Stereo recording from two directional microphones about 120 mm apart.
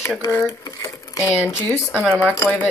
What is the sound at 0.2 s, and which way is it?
Speech, 25° left (ahead or behind).